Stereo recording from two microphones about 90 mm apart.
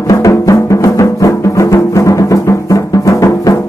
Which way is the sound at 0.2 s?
40° left (ahead or behind).